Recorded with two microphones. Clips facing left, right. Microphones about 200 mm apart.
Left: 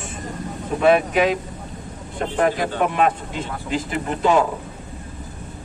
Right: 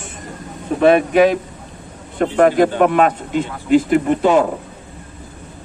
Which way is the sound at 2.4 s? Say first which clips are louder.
Right 7 dB; 55° right (ahead or behind).